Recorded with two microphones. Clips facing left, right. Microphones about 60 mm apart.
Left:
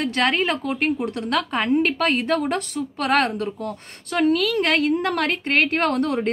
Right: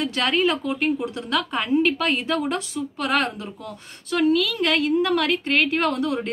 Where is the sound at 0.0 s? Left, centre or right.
Left.